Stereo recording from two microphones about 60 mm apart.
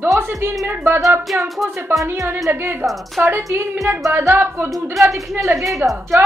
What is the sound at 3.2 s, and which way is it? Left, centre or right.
Speech, right.